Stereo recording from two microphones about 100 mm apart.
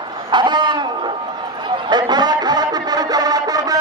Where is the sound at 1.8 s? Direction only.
50° right (ahead or behind).